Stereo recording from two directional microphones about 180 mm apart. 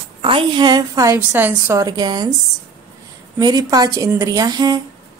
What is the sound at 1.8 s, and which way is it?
Speech, 20° right (ahead or behind).